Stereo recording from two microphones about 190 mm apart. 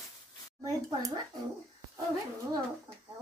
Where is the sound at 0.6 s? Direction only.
20° right (ahead or behind).